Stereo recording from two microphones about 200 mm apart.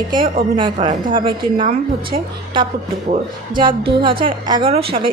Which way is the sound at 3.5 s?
25° right (ahead or behind).